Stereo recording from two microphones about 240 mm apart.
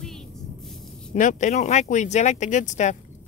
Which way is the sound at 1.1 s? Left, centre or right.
Left.